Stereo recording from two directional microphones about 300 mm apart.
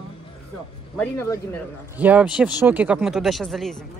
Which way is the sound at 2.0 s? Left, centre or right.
Centre.